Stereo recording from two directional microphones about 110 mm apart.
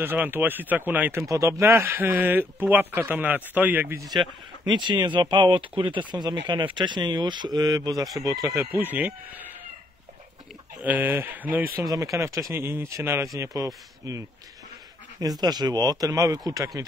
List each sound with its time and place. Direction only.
0.0 s speech: 20° right (ahead or behind)
1.3 s speech: 25° right (ahead or behind)
4.0 s speech: 40° right (ahead or behind)
8.5 s speech: 15° right (ahead or behind)
10.8 s speech: 15° right (ahead or behind)
11.8 s speech: 30° right (ahead or behind)
15.4 s speech: 40° right (ahead or behind)